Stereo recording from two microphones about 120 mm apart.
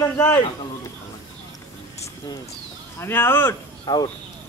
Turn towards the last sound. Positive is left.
turn(degrees=35)  # may be behind; listen again after turning